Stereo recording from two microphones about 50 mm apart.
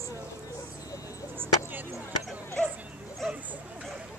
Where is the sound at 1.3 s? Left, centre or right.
Right.